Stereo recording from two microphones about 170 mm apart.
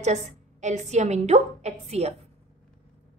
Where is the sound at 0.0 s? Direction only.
45° right (ahead or behind).